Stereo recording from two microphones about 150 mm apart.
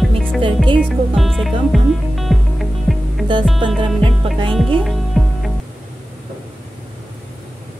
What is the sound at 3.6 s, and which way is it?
Music, 30° right (ahead or behind).